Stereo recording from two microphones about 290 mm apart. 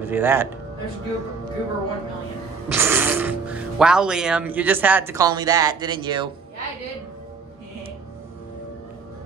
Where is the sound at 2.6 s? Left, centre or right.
Centre.